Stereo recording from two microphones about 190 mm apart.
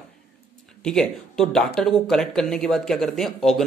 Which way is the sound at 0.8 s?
5° left (ahead or behind).